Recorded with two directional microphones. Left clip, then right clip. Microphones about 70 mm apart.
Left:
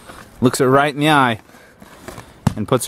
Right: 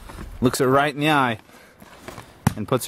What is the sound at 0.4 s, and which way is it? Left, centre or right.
Speech, centre.